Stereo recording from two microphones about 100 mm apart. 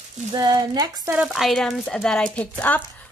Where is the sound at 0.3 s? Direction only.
45° right (ahead or behind).